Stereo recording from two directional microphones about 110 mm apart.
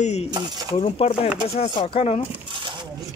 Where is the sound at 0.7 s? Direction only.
70° left (ahead or behind).